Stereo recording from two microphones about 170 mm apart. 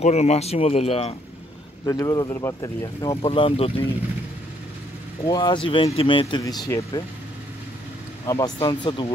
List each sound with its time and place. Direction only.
0.0 s speech: 40° left (ahead or behind)
1.9 s speech: 20° left (ahead or behind)
3.2 s speech: 35° left (ahead or behind)
5.2 s speech: 25° left (ahead or behind)
6.7 s speech: 15° left (ahead or behind)
8.3 s speech: 20° left (ahead or behind)